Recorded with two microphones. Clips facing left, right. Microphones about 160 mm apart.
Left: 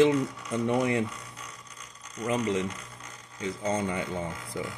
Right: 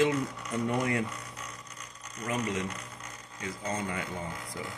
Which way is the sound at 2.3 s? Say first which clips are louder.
Left 5 dB; 20° left (ahead or behind).